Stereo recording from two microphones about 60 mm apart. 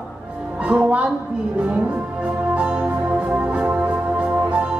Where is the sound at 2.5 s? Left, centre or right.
Right.